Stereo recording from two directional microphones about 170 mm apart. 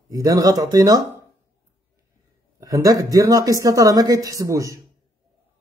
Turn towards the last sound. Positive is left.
turn(degrees=-20)  # may be behind; listen again after turning